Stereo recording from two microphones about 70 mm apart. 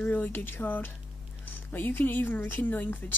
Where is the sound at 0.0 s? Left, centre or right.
Left.